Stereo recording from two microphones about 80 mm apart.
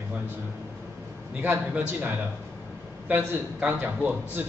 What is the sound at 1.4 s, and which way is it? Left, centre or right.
A man's voice, right.